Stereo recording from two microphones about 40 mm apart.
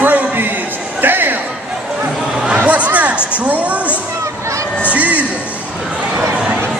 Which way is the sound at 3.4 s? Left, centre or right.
Right.